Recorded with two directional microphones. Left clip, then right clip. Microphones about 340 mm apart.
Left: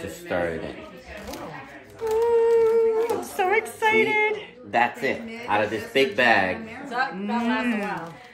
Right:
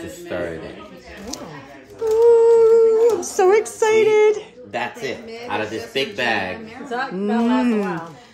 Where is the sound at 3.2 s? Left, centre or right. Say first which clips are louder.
Right 6 dB; centre.